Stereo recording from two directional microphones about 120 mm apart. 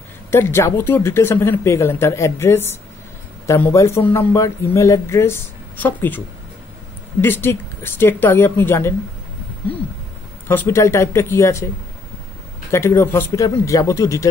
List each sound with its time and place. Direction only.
0.3 s speech: 20° left (ahead or behind)
10.5 s speech: 20° left (ahead or behind)
12.7 s speech: 20° left (ahead or behind)